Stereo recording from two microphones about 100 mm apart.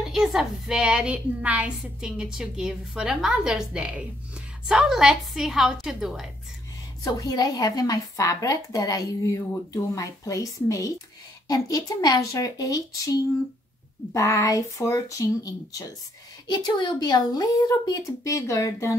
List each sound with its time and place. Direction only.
0.0 s a woman's voice: 5° right (ahead or behind)
7.1 s speech: 40° left (ahead or behind)
16.4 s speech: 50° left (ahead or behind); by 18.9 s 35° left (ahead or behind)